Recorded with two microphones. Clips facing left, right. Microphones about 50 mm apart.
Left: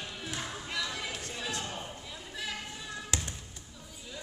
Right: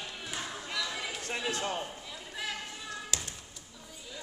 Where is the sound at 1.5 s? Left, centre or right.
Right.